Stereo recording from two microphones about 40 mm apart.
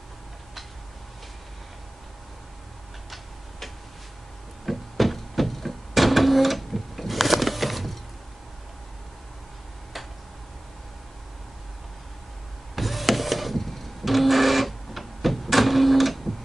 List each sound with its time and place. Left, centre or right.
3.1 s tick-tock: centre
4.6 s a sound: centre
12.7 s printer: centre